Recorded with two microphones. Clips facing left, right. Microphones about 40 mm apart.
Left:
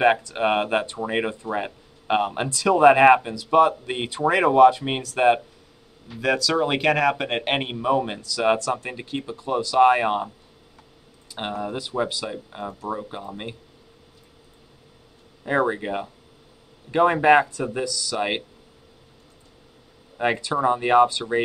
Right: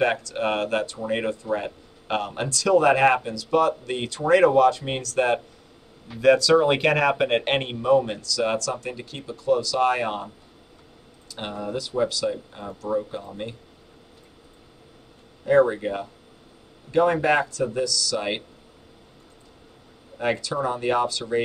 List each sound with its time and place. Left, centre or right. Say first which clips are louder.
0.0 s speech: left 3 dB; left
6.2 s speech: right 5 dB; centre
11.2 s speech: left 2 dB; centre
15.4 s speech: right 4 dB; left
20.2 s speech: left 2 dB; left